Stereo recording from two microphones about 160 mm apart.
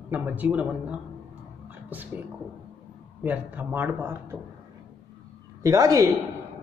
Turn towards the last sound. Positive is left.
turn(degrees=-20)  # may be behind; listen again after turning